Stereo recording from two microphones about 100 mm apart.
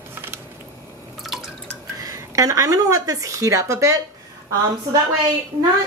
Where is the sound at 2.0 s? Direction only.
35° right (ahead or behind).